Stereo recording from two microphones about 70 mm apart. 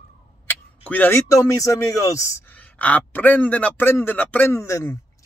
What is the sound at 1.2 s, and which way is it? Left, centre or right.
Speech, left.